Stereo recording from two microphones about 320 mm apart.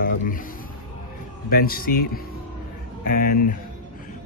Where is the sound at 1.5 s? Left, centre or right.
Left.